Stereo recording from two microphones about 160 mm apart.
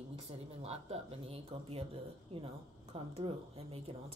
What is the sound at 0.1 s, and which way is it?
A woman's voice, 40° right (ahead or behind).